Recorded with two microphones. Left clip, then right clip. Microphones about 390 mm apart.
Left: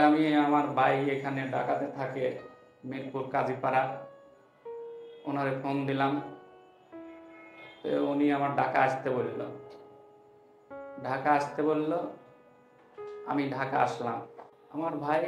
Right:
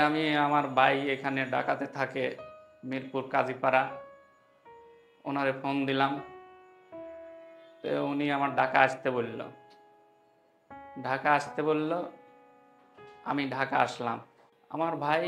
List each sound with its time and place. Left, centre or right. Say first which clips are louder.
0.0 s a man's voice: left 2 dB; right
5.2 s a man's voice: right 2 dB; right
7.8 s a man's voice: left 2 dB; right
10.8 s a man's voice: right 1 dB; right
13.2 s a man's voice: right 1 dB; right